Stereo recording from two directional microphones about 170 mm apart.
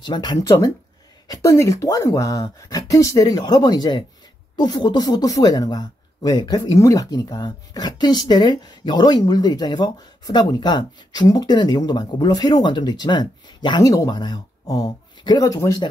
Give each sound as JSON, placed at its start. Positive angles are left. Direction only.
{"t": 0.0, "sound": "speech", "side_deg": 25}